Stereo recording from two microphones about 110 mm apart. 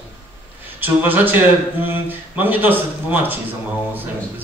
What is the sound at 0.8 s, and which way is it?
A man's voice, 15° right (ahead or behind).